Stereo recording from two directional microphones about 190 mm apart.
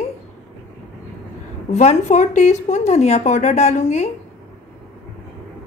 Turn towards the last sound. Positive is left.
turn(degrees=35)  # may be behind; listen again after turning